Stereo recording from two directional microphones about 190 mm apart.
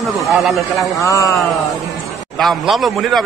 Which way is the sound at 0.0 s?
Centre (ahead or behind).